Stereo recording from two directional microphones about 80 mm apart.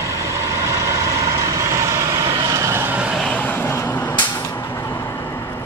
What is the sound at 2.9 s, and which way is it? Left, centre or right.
Vehicle, centre.